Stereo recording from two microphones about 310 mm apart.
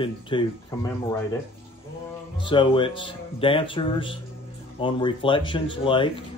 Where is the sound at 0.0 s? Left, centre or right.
Centre.